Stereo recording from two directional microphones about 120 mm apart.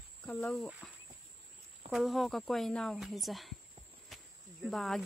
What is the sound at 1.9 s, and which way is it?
Speech, centre (ahead or behind).